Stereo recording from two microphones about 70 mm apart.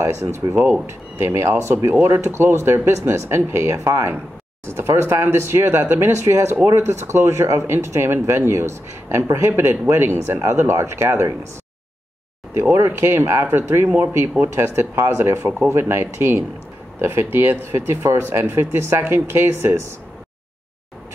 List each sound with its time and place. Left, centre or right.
0.0 s speech: right
12.7 s speech: right